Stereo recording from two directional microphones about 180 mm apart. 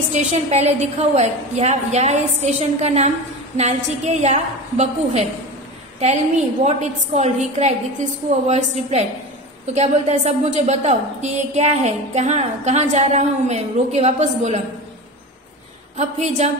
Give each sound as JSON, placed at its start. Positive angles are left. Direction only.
{"t": 0.3, "sound": "a woman's voice", "side_deg": -40}
{"t": 6.6, "sound": "a woman's voice", "side_deg": -40}
{"t": 16.0, "sound": "a woman's voice", "side_deg": -40}